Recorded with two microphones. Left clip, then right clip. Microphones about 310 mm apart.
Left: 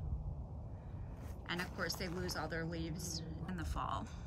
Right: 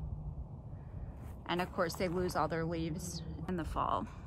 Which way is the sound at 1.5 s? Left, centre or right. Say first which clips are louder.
Right 6 dB; centre.